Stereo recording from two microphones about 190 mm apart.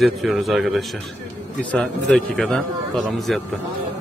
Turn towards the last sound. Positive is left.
turn(degrees=0)  # may be behind; listen again after turning